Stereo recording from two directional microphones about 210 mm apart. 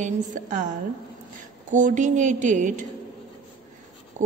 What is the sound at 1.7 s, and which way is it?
A woman's voice, 35° right (ahead or behind).